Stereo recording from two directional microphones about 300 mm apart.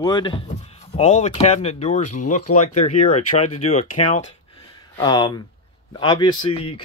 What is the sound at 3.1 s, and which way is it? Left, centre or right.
Speech, left.